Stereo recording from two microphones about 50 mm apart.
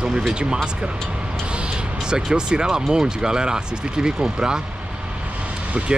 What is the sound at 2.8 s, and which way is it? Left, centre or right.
Speech, centre.